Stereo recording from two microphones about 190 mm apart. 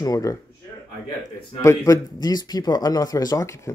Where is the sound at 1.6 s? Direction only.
15° left (ahead or behind).